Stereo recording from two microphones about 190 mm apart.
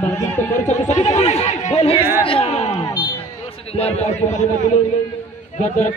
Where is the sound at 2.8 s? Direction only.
20° left (ahead or behind).